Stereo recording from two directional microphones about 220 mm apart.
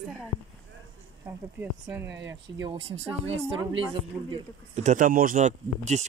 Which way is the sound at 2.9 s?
30° right (ahead or behind).